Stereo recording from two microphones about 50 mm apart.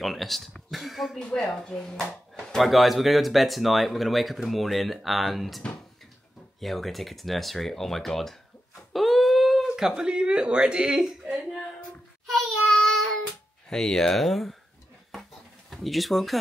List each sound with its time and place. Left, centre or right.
0.0 s speech: centre
1.1 s speech: centre
6.6 s speech: centre
12.3 s child singing: centre
13.7 s speech: centre
15.7 s speech: centre